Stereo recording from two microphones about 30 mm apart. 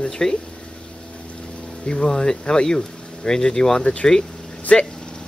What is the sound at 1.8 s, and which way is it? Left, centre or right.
Speech, left.